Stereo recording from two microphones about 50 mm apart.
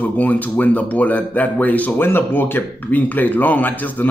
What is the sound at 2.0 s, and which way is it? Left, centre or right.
A man's voice, left.